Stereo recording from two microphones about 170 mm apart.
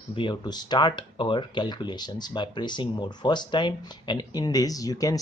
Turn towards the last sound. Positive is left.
turn(degrees=20)  # may be behind; listen again after turning